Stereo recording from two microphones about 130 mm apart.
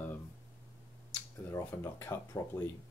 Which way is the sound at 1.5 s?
20° left (ahead or behind).